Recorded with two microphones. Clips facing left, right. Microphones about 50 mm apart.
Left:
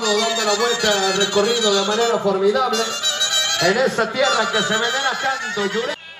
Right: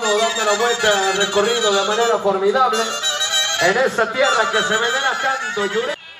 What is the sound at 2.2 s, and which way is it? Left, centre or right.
A man's voice, centre.